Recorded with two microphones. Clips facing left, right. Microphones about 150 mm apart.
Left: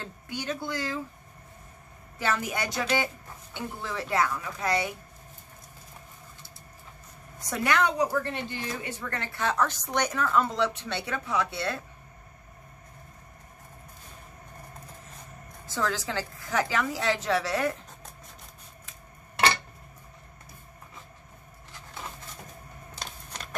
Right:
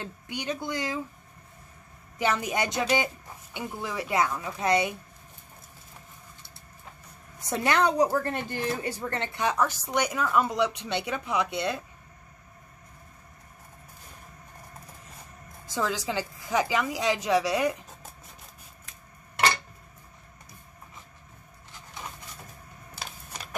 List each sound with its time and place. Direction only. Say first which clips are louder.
0.0 s speech: right 1 dB; 15° right (ahead or behind)
2.1 s a woman's voice: right 3 dB; 15° right (ahead or behind)
7.4 s speech: right 2 dB; 30° right (ahead or behind)
8.1 s speech: right 2 dB; 45° right (ahead or behind)
9.0 s a woman's voice: right 1 dB; 25° right (ahead or behind)
15.6 s a woman's voice: right 1 dB; 15° right (ahead or behind)
22.9 s a sound: right 1 dB; 5° right (ahead or behind)